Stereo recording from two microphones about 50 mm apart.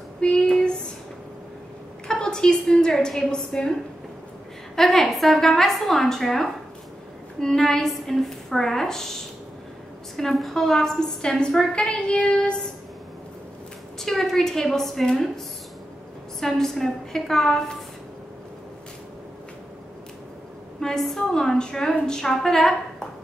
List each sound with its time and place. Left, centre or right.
0.2 s a sound: centre
2.0 s a woman's voice: centre
4.7 s a woman's voice: centre
13.9 s a woman's voice: centre
16.3 s a woman's voice: centre
20.8 s a woman's voice: centre